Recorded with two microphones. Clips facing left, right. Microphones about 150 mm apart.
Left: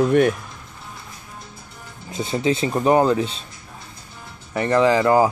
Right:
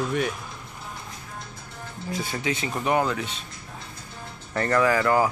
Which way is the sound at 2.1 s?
25° left (ahead or behind).